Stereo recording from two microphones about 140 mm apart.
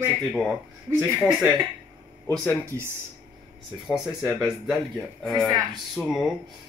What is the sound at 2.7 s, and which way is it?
Speech, 20° right (ahead or behind).